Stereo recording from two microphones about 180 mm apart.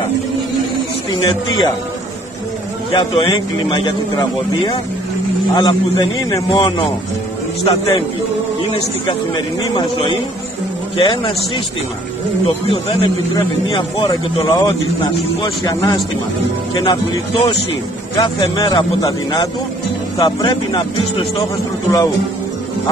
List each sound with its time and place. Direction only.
1.2 s speech: 25° left (ahead or behind)
2.9 s speech: 30° left (ahead or behind)
9.0 s speech: 25° left (ahead or behind)
18.8 s speech: 25° left (ahead or behind)